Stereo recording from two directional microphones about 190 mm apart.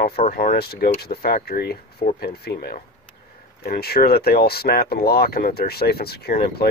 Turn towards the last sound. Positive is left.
turn(degrees=55)  # may be behind; listen again after turning